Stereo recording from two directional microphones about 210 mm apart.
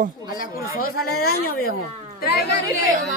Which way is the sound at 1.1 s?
90° left.